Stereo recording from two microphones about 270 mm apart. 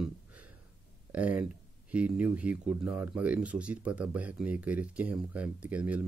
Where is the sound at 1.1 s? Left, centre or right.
Centre.